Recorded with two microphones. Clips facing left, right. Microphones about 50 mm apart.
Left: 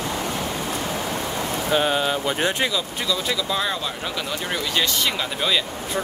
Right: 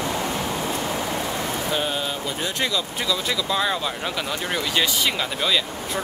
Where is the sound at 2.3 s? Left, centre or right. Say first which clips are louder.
Left 5 dB; left.